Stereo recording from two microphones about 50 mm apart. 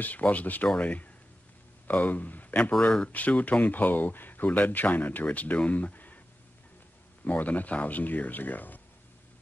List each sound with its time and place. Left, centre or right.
0.0 s speech: left
2.8 s speech: centre
3.1 s speech: left
7.2 s speech: left